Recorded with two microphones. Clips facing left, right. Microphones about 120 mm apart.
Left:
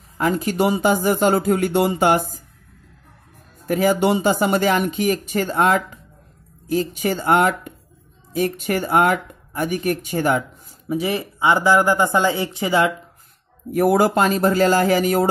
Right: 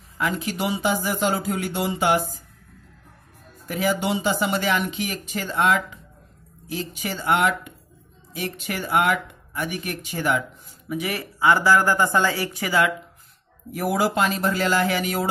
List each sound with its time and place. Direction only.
0.2 s speech: 45° left (ahead or behind)
3.6 s speech: 50° left (ahead or behind)
10.9 s speech: 30° left (ahead or behind)
13.7 s speech: 50° left (ahead or behind)